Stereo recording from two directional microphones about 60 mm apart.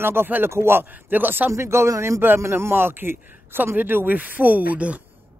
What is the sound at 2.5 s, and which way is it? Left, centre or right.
Speech, right.